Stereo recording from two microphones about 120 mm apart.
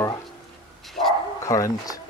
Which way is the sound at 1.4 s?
25° left (ahead or behind).